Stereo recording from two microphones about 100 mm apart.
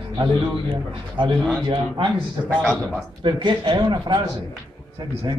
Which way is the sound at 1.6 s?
55° right (ahead or behind).